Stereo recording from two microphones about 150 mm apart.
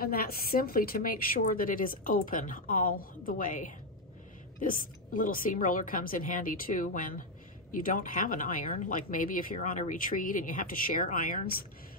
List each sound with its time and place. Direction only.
0.0 s a woman's voice: 85° left